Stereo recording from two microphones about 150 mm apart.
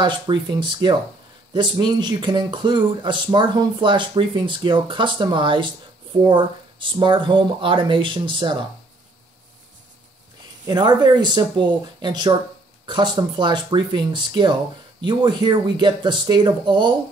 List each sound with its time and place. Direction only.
0.0 s speech: 30° right (ahead or behind)
10.7 s speech: 30° right (ahead or behind)